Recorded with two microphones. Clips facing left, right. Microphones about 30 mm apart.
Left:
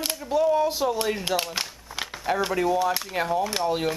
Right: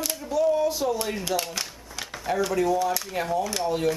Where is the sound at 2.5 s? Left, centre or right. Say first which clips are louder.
Even; left.